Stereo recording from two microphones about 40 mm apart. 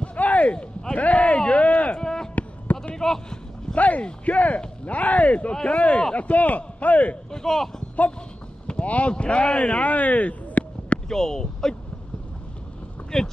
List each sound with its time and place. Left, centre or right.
0.0 s a sound: left
2.0 s a sound: centre
2.3 s a sound: left
2.9 s speech: centre
3.7 s speech: left
5.5 s speech: centre
5.8 s speech: left
7.2 s speech: centre
8.6 s boat: left
9.1 s speech: left
9.8 s a sound: left
11.1 s speech: centre
13.1 s speech: centre